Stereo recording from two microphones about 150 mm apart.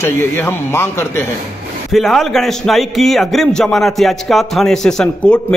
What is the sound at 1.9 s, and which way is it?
A man's voice, centre (ahead or behind).